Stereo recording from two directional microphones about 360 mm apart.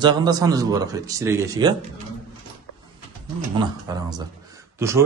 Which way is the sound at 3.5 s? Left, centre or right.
Centre.